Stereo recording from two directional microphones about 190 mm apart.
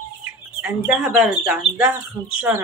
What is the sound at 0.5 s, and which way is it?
Speech, 5° right (ahead or behind).